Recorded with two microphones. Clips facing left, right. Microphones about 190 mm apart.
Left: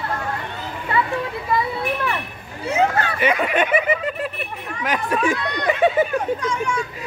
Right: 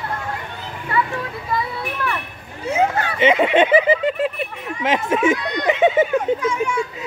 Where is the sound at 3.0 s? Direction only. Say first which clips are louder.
Right 4 dB; 20° right (ahead or behind).